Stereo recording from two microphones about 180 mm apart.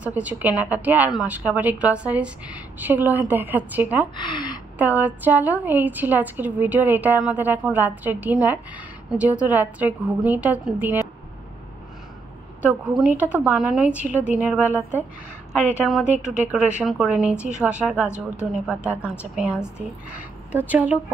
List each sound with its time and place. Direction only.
0.0 s a woman's voice: 10° right (ahead or behind)
4.2 s a woman's voice: 25° left (ahead or behind)
4.7 s a woman's voice: 10° right (ahead or behind)
13.2 s a woman's voice: 10° right (ahead or behind)